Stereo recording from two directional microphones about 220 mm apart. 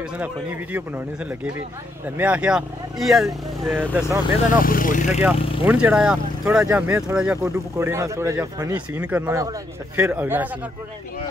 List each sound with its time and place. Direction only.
0.7 s speech: 10° right (ahead or behind)
4.6 s speech: 40° left (ahead or behind)
5.6 s speech: 5° right (ahead or behind)